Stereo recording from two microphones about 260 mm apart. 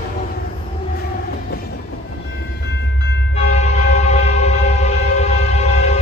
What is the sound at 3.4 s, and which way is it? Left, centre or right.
Train, left.